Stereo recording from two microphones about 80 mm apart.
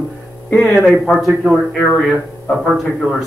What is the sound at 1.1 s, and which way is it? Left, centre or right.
Speech, centre.